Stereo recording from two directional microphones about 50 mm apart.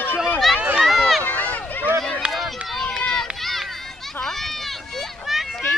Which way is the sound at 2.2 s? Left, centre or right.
Right.